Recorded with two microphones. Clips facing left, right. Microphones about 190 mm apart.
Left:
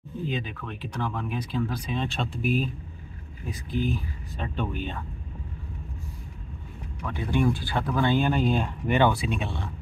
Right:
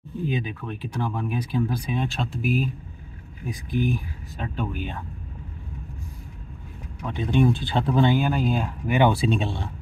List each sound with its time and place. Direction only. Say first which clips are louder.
0.3 s speech: right 4 dB; 15° right (ahead or behind)
7.1 s speech: right 4 dB; 20° right (ahead or behind)
8.1 s speech: right 1 dB; 5° right (ahead or behind)
9.1 s speech: right 6 dB; 30° right (ahead or behind)